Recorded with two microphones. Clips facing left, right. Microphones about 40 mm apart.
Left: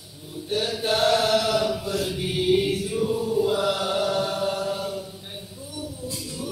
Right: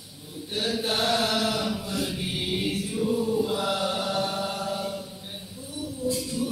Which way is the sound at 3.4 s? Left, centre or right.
Left.